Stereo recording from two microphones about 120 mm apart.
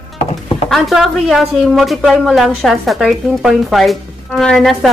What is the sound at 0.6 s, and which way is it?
Speech, centre (ahead or behind).